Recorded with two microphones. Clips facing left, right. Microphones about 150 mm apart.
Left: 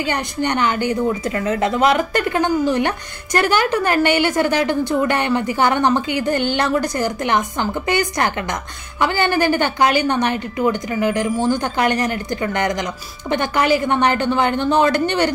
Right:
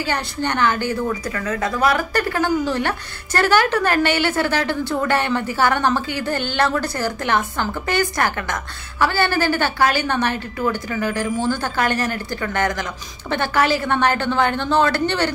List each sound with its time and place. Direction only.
0.0 s a woman's voice: 15° left (ahead or behind)